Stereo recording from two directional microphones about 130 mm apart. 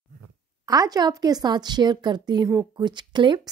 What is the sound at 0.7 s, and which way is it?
Speech, 30° right (ahead or behind).